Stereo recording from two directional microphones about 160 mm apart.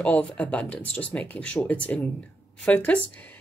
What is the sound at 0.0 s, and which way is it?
Speech, 10° left (ahead or behind).